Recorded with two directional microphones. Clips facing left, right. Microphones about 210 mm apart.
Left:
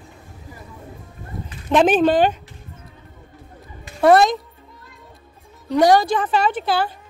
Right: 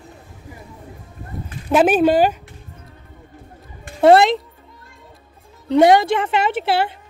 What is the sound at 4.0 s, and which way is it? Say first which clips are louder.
Speech: right 2 dB; 25° right (ahead or behind).